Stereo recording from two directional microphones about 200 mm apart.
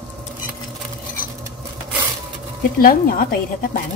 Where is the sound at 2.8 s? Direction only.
45° left (ahead or behind).